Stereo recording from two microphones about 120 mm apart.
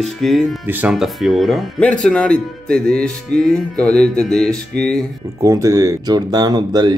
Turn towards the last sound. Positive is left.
turn(degrees=-35)  # may be behind; listen again after turning